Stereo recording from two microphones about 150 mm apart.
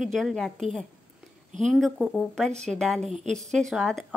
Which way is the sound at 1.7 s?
Centre (ahead or behind).